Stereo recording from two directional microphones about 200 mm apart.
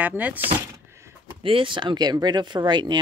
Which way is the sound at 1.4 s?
25° right (ahead or behind).